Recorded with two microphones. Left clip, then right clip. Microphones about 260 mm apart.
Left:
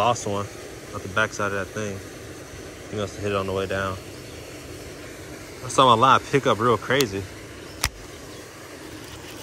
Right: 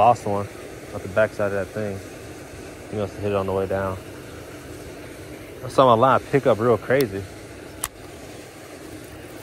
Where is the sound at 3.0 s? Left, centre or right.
Centre.